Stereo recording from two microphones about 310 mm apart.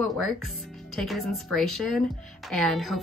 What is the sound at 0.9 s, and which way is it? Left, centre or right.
A woman's voice, centre.